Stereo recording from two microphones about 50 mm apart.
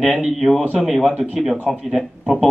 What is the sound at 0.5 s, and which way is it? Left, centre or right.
Speech, right.